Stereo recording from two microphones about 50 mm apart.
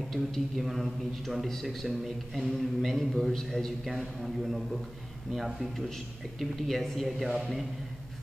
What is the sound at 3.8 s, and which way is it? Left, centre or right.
A man's voice, centre.